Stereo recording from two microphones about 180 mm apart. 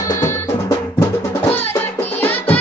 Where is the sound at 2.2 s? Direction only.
10° left (ahead or behind).